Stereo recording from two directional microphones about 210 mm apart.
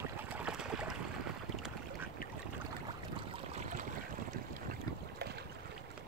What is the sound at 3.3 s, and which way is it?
Boat, 30° right (ahead or behind).